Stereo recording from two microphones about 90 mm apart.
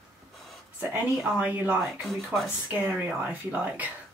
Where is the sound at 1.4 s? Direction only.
20° right (ahead or behind).